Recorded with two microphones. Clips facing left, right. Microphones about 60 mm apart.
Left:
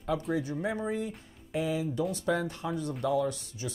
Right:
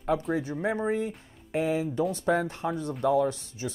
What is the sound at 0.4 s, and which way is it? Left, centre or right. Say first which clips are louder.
Speech: right 3 dB; right.